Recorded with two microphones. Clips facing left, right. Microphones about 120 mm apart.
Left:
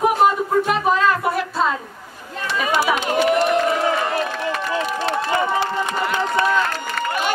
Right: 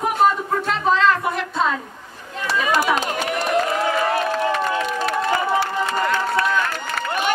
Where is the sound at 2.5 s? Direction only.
40° right (ahead or behind).